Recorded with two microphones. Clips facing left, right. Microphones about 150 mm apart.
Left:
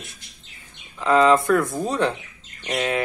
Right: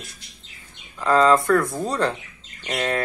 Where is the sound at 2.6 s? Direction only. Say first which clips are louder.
Left 1 dB; 10° left (ahead or behind).